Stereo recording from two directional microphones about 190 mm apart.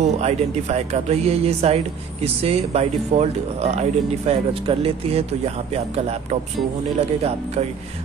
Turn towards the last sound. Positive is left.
turn(degrees=-35)  # may be behind; listen again after turning